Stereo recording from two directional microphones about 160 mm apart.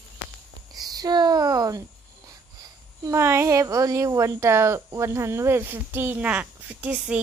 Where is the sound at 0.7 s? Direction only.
25° right (ahead or behind).